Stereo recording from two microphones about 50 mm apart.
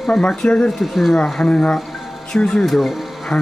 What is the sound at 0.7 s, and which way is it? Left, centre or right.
Speech, centre.